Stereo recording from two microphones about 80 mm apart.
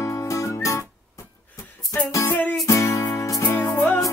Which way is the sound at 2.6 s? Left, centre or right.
Left.